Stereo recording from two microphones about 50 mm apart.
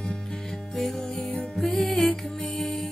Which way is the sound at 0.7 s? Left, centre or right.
Centre.